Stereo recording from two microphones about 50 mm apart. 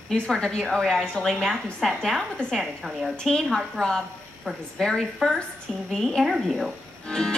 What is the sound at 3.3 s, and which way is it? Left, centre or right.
A woman's voice, centre.